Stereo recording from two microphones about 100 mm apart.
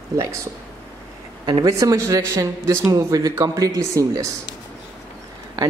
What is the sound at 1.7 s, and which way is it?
A man's voice, 30° right (ahead or behind).